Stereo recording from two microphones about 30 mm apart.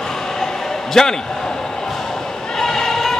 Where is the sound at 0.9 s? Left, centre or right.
Centre.